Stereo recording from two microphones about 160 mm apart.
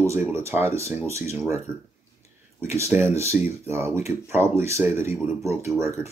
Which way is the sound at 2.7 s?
15° right (ahead or behind).